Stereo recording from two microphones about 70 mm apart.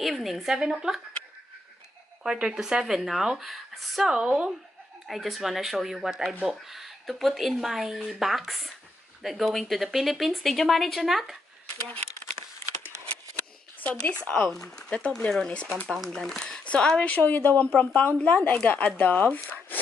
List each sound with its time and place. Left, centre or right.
0.0 s speech: centre
2.4 s speech: centre
5.0 s speech: centre
13.8 s speech: left
14.5 s speech: centre; by 19.8 s left